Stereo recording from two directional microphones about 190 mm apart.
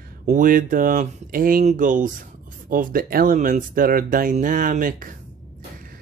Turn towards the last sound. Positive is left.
turn(degrees=-45)  # may be behind; listen again after turning